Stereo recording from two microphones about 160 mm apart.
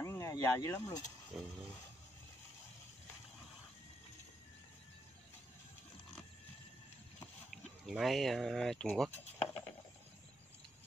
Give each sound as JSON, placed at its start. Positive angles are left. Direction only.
{"t": 0.0, "sound": "speech", "side_deg": 20}
{"t": 1.3, "sound": "a sound", "side_deg": 0}
{"t": 7.5, "sound": "speech", "side_deg": 0}